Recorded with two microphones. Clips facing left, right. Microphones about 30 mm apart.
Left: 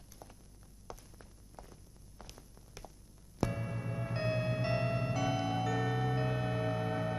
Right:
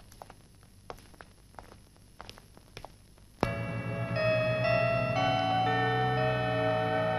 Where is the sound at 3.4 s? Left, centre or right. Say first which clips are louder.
Right 4 dB; right.